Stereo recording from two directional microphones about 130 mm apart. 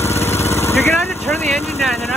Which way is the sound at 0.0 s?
20° left (ahead or behind).